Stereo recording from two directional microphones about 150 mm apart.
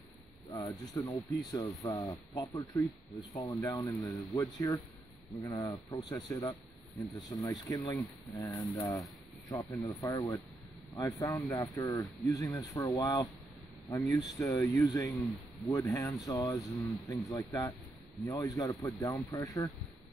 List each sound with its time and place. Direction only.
0.5 s speech: 25° left (ahead or behind)